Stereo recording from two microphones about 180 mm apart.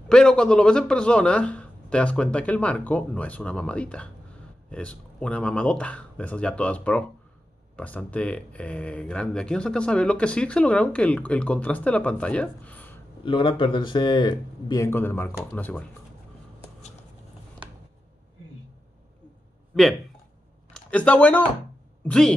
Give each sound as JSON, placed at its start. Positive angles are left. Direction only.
{"t": 0.1, "sound": "speech", "side_deg": 5}
{"t": 13.2, "sound": "speech", "side_deg": 30}
{"t": 19.7, "sound": "speech", "side_deg": 0}